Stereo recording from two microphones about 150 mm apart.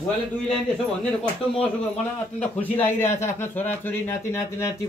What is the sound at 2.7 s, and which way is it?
Speech, 15° left (ahead or behind).